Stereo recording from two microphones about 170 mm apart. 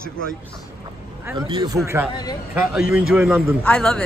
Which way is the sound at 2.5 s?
5° right (ahead or behind).